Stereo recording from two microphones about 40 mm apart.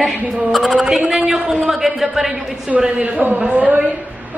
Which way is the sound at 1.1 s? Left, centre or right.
Centre.